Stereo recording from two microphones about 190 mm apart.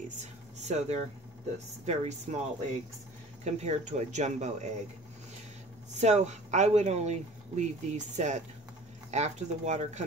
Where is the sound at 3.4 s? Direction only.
35° right (ahead or behind).